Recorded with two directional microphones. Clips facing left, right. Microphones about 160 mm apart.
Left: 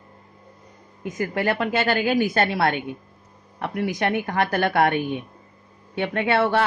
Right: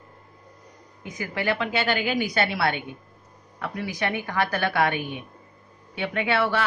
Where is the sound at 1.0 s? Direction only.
45° left (ahead or behind).